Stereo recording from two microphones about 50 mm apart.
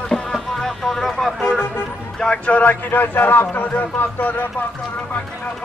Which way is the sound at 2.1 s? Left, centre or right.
Centre.